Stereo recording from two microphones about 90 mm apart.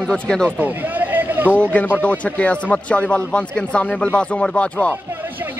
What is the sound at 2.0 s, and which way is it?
Speech, 15° left (ahead or behind).